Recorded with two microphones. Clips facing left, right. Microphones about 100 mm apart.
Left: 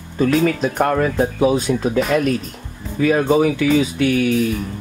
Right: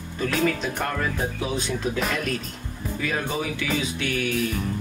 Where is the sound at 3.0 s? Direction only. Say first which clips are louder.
Left 13 dB; 55° left (ahead or behind).